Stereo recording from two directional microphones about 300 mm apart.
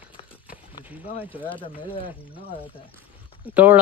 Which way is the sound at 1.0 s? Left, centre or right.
Centre.